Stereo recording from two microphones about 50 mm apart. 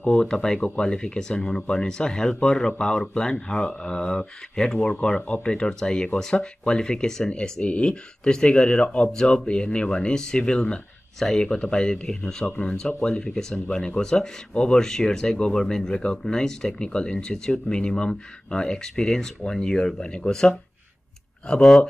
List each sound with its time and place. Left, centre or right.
0.0 s speech: centre
12.4 s speech: left